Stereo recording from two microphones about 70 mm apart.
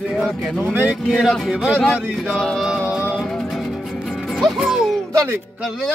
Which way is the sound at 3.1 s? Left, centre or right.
Centre.